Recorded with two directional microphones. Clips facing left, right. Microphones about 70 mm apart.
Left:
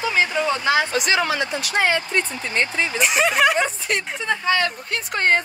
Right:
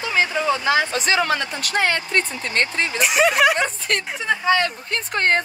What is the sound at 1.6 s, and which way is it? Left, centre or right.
Speech, right.